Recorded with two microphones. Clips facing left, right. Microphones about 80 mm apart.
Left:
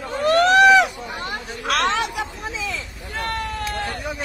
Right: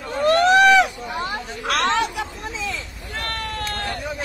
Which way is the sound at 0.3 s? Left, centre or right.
Centre.